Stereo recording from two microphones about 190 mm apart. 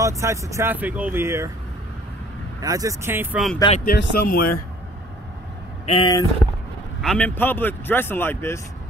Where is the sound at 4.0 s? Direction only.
50° left (ahead or behind).